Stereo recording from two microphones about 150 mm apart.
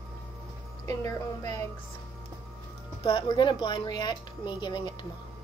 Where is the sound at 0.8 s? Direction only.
20° left (ahead or behind).